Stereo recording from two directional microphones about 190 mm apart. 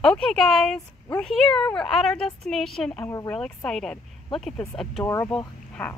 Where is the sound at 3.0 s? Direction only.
15° left (ahead or behind).